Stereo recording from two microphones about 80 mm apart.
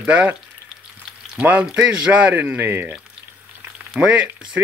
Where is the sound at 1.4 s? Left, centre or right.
Centre.